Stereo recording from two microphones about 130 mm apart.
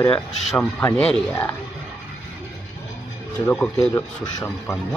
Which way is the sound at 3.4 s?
15° left (ahead or behind).